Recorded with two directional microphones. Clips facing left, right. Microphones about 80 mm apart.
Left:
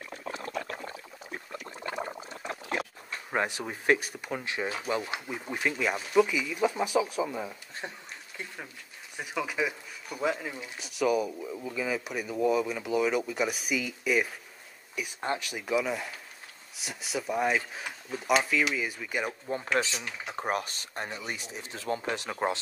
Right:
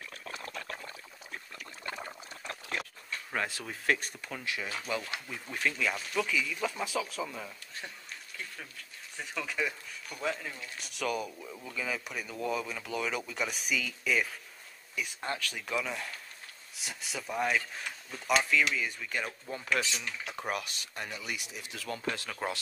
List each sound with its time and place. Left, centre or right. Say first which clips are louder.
0.5 s a sound: left 6 dB; centre
3.3 s speech: left 5 dB; left
9.1 s speech: left 4 dB; centre
10.8 s speech: left 7 dB; centre
19.5 s speech: left 3 dB; left
20.0 s speech: left 1 dB; centre
20.3 s speech: left 6 dB; left